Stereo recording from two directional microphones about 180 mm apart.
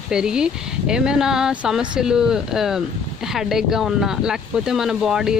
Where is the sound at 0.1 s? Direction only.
5° right (ahead or behind).